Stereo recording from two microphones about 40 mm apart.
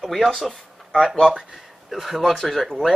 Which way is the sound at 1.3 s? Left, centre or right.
Centre.